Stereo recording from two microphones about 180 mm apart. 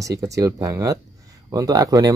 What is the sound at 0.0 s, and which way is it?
Speech, 20° right (ahead or behind).